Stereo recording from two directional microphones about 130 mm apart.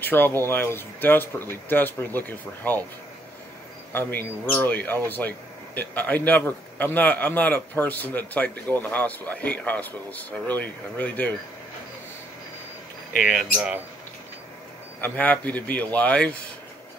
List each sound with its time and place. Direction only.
0.0 s a man's voice: 15° left (ahead or behind)
3.9 s a man's voice: 15° left (ahead or behind)
13.2 s speech: 5° right (ahead or behind)
15.0 s a man's voice: 15° left (ahead or behind)